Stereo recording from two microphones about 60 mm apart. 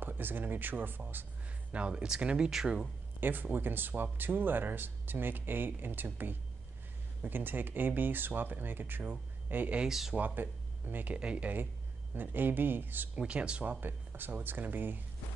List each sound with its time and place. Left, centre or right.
0.0 s speech: right
1.7 s speech: centre
3.2 s speech: right
9.8 s speech: centre
10.1 s speech: right
11.1 s speech: right
13.1 s speech: centre